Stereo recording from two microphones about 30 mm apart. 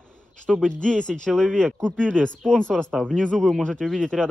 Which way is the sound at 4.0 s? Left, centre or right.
Left.